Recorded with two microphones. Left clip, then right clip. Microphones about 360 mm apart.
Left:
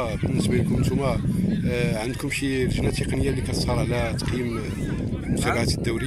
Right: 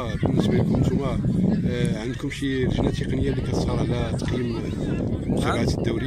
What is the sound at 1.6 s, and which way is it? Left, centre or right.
Speech, centre.